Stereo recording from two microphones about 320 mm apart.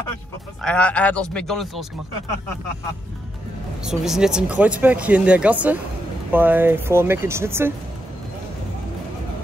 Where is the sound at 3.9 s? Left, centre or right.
Centre.